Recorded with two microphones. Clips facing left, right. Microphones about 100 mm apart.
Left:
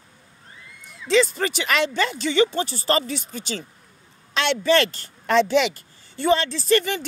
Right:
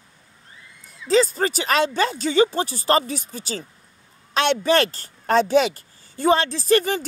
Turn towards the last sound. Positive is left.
turn(degrees=-40)  # may be behind; listen again after turning